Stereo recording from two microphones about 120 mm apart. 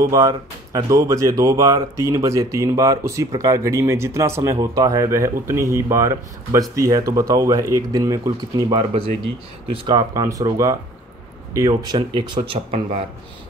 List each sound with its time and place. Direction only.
0.0 s speech: 30° right (ahead or behind)
8.6 s speech: 50° right (ahead or behind)
9.8 s speech: 35° right (ahead or behind)